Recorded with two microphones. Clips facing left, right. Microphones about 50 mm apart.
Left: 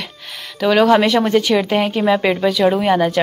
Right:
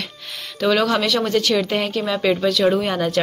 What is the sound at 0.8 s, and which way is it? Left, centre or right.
Speech, left.